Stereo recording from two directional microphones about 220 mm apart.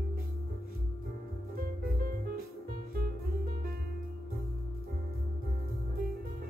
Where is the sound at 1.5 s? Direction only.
40° right (ahead or behind).